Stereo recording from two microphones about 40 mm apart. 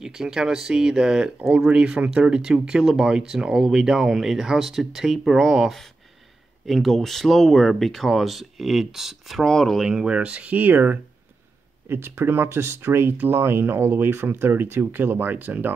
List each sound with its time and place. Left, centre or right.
0.0 s speech: centre
6.6 s speech: centre
9.4 s speech: centre
10.0 s speech: right
10.5 s speech: right
11.9 s speech: right